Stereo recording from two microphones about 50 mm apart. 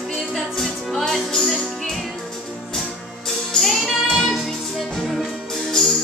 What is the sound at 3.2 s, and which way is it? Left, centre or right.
Music, centre.